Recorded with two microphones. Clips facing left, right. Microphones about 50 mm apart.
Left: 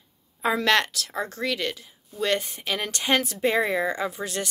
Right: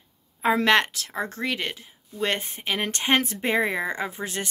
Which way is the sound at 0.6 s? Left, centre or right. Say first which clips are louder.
Right 2 dB; right.